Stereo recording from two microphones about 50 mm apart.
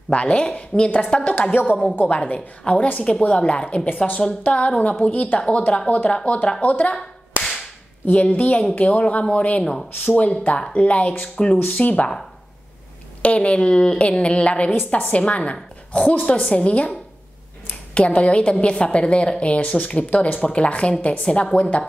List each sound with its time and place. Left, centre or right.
0.1 s a woman's voice: left
1.5 s speech: left
2.0 s a woman's voice: left
8.1 s a woman's voice: left
13.2 s a woman's voice: left
18.2 s a woman's voice: left